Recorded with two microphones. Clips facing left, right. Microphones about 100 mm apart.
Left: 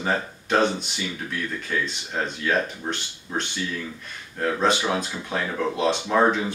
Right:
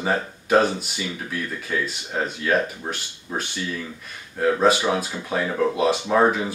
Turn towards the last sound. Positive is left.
turn(degrees=-5)  # may be behind; listen again after turning